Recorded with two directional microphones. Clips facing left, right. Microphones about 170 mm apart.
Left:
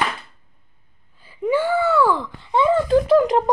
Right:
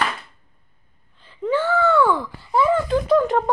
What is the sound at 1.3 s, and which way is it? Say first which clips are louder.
Speech: left 1 dB; 10° left (ahead or behind).